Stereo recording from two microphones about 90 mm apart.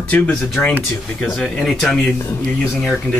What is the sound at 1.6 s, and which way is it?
Speech, centre (ahead or behind).